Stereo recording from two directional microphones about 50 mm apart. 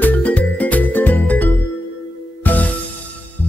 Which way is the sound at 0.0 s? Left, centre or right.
Left.